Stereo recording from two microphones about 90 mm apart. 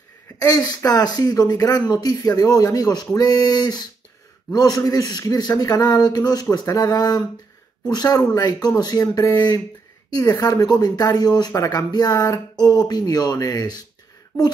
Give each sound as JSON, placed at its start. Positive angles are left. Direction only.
{"t": 0.4, "sound": "speech", "side_deg": 45}